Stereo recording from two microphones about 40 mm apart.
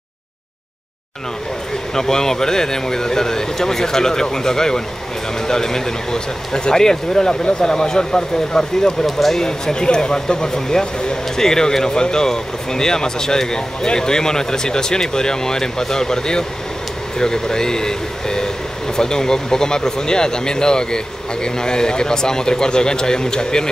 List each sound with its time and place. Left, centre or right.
2.0 s speech: centre
9.0 s speech: centre
9.4 s speech: centre